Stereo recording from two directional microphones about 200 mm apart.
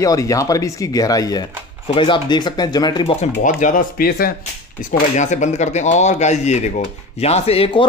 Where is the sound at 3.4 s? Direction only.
40° left (ahead or behind).